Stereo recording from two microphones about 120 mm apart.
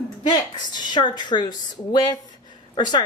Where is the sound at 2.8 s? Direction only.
40° left (ahead or behind).